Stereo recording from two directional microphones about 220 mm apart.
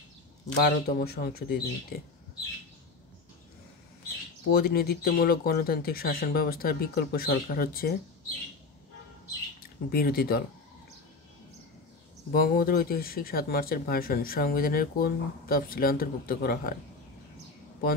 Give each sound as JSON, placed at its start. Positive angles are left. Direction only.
{"t": 0.7, "sound": "speech", "side_deg": 45}
{"t": 4.5, "sound": "speech", "side_deg": 45}
{"t": 9.8, "sound": "speech", "side_deg": 45}
{"t": 12.3, "sound": "speech", "side_deg": 45}